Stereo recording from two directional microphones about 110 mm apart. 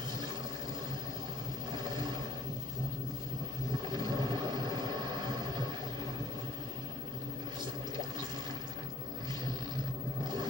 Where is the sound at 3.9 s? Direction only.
40° right (ahead or behind).